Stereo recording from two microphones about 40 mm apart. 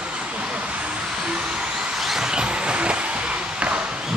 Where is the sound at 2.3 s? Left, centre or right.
Right.